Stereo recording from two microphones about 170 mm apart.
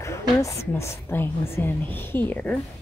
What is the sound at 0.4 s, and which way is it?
A woman's voice, 15° left (ahead or behind).